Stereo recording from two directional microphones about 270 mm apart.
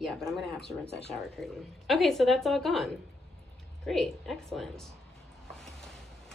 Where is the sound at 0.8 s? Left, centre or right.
Left.